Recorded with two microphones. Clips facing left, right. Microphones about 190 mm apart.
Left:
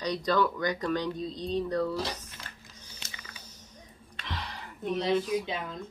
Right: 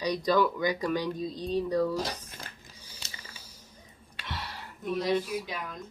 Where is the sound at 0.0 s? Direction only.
10° right (ahead or behind).